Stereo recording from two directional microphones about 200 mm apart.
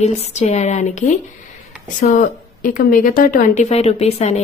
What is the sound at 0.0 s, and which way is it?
A woman's voice, 35° left (ahead or behind).